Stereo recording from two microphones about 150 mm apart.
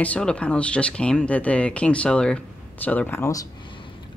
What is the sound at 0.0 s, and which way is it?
Speech, 10° left (ahead or behind).